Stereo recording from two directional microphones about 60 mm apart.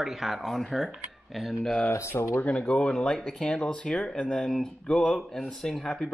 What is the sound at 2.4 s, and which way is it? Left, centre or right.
Speech, centre.